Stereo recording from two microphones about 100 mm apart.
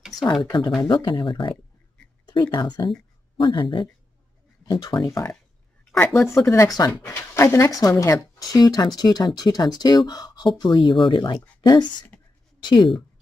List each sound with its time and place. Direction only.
0.1 s speech: 45° left (ahead or behind)
2.5 s speech: 50° left (ahead or behind)
4.8 s speech: 35° left (ahead or behind)